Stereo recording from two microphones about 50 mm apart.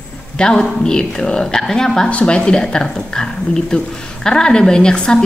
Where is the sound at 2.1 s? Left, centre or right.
Left.